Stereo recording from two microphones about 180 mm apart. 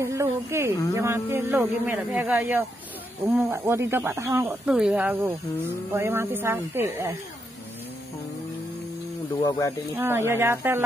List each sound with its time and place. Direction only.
0.0 s a man's voice: 15° right (ahead or behind)
4.6 s a man's voice: 5° right (ahead or behind)
9.3 s speech: 25° left (ahead or behind)
9.9 s a man's voice: 15° right (ahead or behind)